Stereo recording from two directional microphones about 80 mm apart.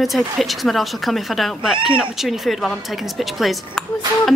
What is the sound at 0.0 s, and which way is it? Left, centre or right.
Speech, centre.